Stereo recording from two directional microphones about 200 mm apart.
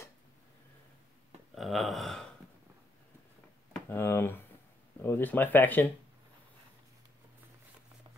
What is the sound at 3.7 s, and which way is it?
Speech, 10° left (ahead or behind).